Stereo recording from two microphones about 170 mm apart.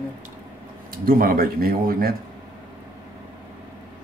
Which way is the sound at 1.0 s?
60° right (ahead or behind).